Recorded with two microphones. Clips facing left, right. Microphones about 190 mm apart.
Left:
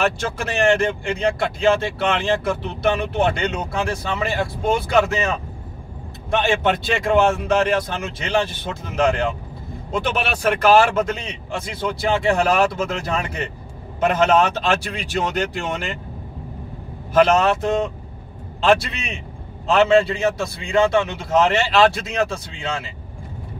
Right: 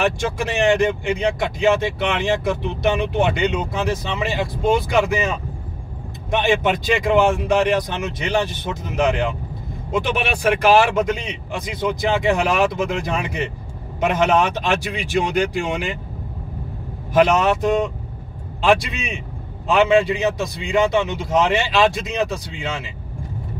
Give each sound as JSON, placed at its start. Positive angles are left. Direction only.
{"t": 0.0, "sound": "speech", "side_deg": -15}
{"t": 6.4, "sound": "speech", "side_deg": -15}
{"t": 17.1, "sound": "speech", "side_deg": -15}